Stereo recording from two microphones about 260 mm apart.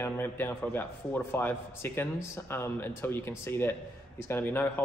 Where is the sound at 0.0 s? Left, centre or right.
Centre.